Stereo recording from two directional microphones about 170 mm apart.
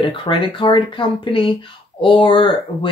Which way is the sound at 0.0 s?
30° left (ahead or behind).